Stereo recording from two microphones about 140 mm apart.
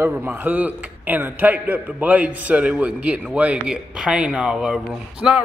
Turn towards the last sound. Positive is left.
turn(degrees=-5)  # may be behind; listen again after turning